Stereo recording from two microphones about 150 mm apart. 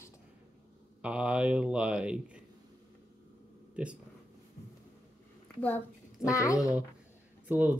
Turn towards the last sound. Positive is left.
turn(degrees=-15)  # may be behind; listen again after turning